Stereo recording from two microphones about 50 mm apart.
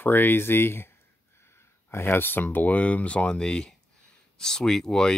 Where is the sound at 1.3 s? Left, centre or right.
Left.